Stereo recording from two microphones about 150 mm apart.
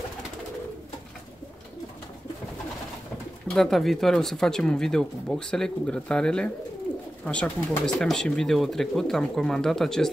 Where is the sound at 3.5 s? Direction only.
Centre (ahead or behind).